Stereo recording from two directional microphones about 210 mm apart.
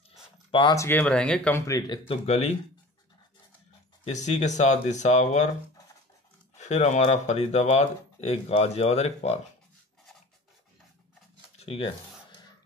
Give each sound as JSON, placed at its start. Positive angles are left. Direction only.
{"t": 0.5, "sound": "speech", "side_deg": 20}
{"t": 4.0, "sound": "speech", "side_deg": 35}
{"t": 6.5, "sound": "speech", "side_deg": 35}
{"t": 11.5, "sound": "music", "side_deg": 30}